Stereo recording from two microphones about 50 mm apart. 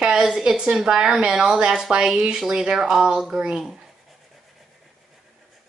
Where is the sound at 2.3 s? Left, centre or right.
Centre.